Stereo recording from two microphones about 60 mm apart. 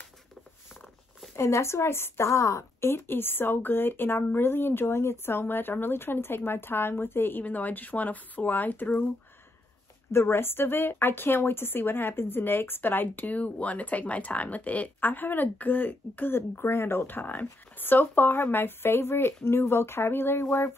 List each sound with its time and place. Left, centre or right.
1.3 s speech: left
2.9 s a woman's voice: left
10.1 s a woman's voice: left